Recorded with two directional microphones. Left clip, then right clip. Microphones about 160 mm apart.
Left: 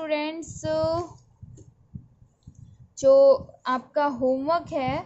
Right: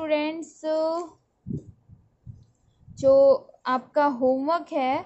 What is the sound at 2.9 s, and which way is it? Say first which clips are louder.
A woman's voice: left 1 dB; 5° right (ahead or behind).